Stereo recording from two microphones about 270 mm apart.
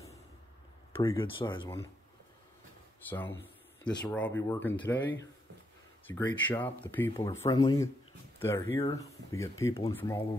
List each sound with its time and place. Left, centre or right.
0.9 s speech: centre
3.1 s speech: centre
6.0 s speech: centre